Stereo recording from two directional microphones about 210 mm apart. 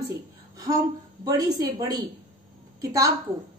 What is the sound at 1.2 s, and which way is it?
A woman's voice, 15° right (ahead or behind).